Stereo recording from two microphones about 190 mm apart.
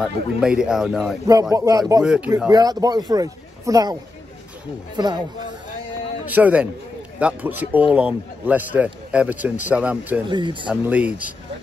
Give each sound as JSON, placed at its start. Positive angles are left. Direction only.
{"t": 0.0, "sound": "speech", "side_deg": -5}
{"t": 1.5, "sound": "a man's voice", "side_deg": -15}
{"t": 2.0, "sound": "a man's voice", "side_deg": -5}
{"t": 2.5, "sound": "a man's voice", "side_deg": -20}
{"t": 6.2, "sound": "a man's voice", "side_deg": -10}
{"t": 10.2, "sound": "a man's voice", "side_deg": -25}
{"t": 10.7, "sound": "a man's voice", "side_deg": -5}